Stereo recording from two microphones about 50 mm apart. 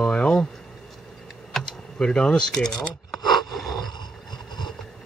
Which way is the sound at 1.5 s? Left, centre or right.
Centre.